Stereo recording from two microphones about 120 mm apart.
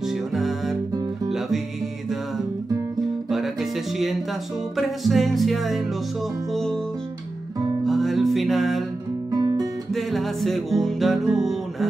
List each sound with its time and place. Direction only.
0.3 s music: centre (ahead or behind)
4.7 s music: centre (ahead or behind)
7.8 s music: centre (ahead or behind)
9.3 s guitar: 35° right (ahead or behind)
9.9 s music: centre (ahead or behind)